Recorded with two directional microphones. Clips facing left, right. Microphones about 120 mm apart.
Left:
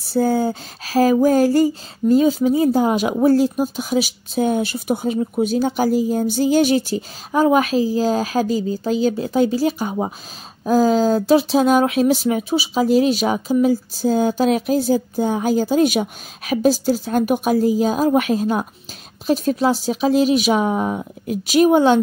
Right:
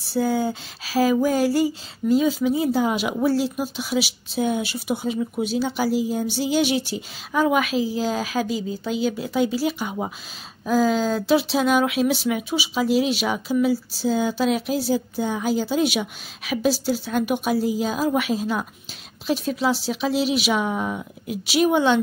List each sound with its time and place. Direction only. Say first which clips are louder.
0.0 s speech: left 4 dB; 45° left (ahead or behind)